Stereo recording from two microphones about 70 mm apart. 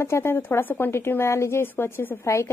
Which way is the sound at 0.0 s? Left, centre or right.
Left.